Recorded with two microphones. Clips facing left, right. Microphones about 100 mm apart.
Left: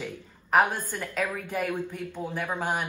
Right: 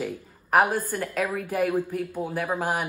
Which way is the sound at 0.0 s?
5° right (ahead or behind).